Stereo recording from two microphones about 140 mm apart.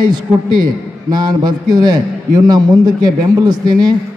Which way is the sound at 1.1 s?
30° right (ahead or behind).